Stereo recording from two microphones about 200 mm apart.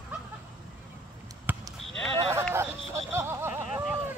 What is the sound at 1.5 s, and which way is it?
Basketball bounce, 10° right (ahead or behind).